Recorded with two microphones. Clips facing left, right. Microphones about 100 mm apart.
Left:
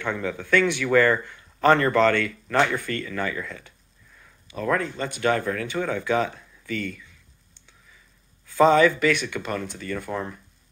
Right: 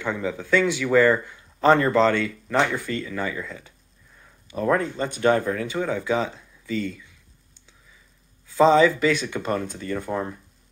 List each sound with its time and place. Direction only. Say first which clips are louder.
0.0 s speech: right 1 dB; 15° right (ahead or behind)
8.5 s speech: right 1 dB; 20° right (ahead or behind)